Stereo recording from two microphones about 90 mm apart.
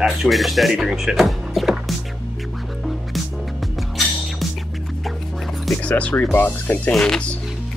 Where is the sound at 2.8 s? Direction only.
Centre (ahead or behind).